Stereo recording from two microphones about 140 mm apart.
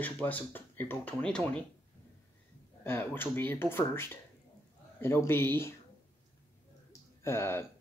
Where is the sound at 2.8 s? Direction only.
15° left (ahead or behind).